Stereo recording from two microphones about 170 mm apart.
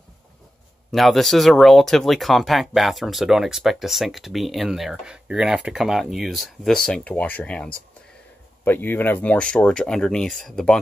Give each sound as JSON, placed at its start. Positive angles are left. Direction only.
{"t": 0.9, "sound": "speech", "side_deg": 0}